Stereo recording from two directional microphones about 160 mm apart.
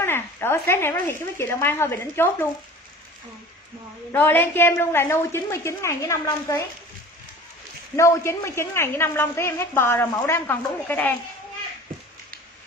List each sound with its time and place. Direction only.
0.0 s a man's voice: 15° left (ahead or behind)
4.1 s a man's voice: 10° left (ahead or behind)
7.9 s a man's voice: 20° left (ahead or behind)